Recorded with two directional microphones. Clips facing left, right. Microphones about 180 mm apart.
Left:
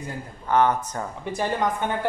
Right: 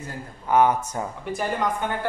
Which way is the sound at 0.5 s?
10° right (ahead or behind).